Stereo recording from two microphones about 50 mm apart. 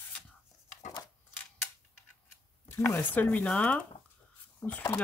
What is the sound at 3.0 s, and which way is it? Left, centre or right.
Speech, left.